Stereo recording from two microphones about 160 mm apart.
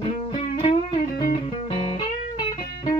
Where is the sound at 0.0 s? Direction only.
45° left (ahead or behind).